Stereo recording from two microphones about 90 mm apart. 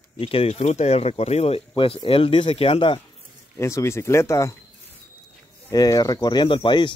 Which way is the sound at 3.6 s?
30° left (ahead or behind).